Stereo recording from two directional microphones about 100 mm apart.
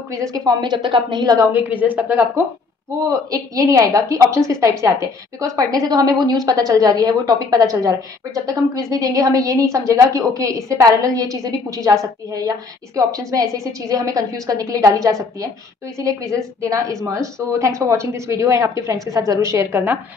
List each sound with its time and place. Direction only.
0.1 s a woman's voice: 35° right (ahead or behind)
1.6 s speech: 15° right (ahead or behind)
3.1 s a woman's voice: 35° right (ahead or behind)